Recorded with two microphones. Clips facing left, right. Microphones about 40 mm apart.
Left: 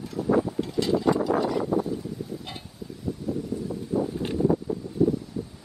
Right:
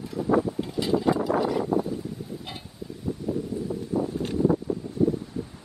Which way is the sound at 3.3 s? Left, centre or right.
Right.